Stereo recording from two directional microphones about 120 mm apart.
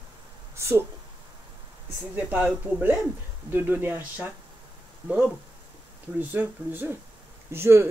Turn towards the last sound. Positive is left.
turn(degrees=-20)  # may be behind; listen again after turning